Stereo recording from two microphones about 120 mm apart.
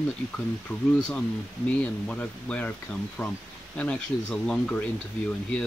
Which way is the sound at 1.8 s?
10° left (ahead or behind).